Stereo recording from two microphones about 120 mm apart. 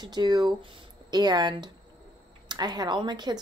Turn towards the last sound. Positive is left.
turn(degrees=-35)  # may be behind; listen again after turning